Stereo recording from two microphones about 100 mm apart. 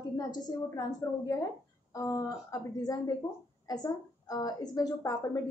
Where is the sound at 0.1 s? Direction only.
45° left (ahead or behind).